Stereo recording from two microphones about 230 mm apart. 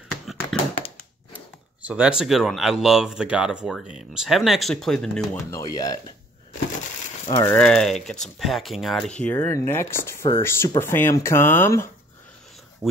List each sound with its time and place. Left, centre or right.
0.1 s a sound: centre
1.3 s speech: centre
5.5 s speech: centre
7.3 s speech: centre
12.8 s speech: centre